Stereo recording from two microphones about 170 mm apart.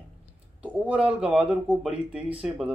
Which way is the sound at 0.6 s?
10° right (ahead or behind).